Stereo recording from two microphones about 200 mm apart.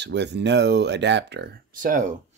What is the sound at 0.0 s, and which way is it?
Speech, 60° right (ahead or behind).